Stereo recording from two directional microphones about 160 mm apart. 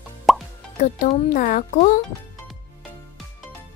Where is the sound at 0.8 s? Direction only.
50° left (ahead or behind).